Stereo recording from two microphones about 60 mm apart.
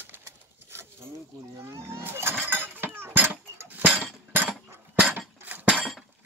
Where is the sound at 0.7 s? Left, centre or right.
Right.